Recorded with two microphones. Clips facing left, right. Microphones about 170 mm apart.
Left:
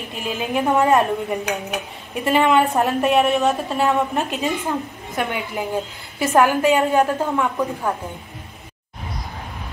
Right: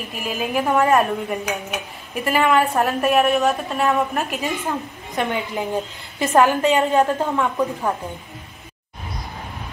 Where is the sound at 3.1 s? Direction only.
Centre (ahead or behind).